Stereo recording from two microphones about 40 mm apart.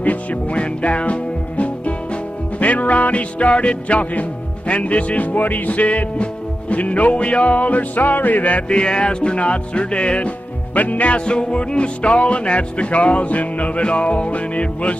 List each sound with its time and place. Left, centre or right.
0.0 s music: left
8.6 s music: left
10.7 s music: left
11.2 s music: left